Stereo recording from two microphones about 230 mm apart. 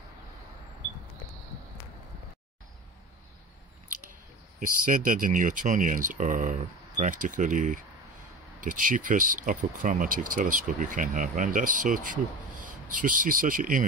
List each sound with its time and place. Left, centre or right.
4.8 s speech: right